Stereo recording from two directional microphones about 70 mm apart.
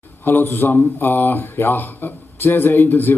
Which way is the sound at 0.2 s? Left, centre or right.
Left.